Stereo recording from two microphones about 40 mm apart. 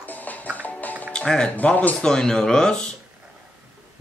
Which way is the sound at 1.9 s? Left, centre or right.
Centre.